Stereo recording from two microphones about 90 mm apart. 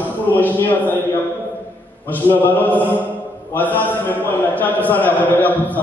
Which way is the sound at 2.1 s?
20° left (ahead or behind).